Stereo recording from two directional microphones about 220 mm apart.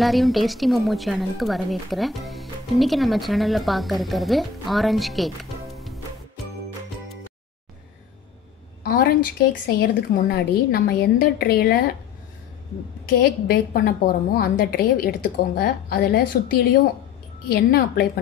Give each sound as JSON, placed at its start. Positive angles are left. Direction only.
{"t": 0.0, "sound": "a woman's voice", "side_deg": 0}
{"t": 8.8, "sound": "a woman's voice", "side_deg": 40}
{"t": 13.2, "sound": "a woman's voice", "side_deg": 45}